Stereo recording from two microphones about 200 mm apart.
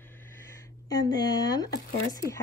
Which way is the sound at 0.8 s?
20° left (ahead or behind).